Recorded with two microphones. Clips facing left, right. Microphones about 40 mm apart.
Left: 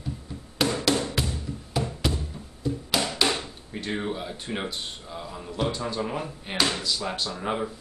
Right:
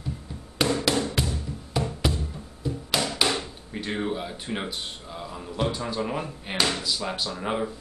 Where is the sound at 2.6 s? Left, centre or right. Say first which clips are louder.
Left 2 dB; centre.